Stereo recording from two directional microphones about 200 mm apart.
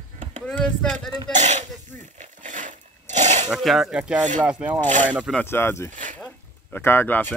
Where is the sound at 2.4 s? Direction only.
40° right (ahead or behind).